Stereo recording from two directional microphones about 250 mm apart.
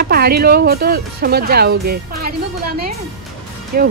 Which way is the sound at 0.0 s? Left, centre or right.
Right.